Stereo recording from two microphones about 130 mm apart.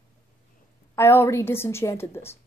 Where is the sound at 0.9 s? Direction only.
20° left (ahead or behind).